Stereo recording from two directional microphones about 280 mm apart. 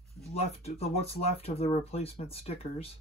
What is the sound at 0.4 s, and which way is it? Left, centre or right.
Speech, left.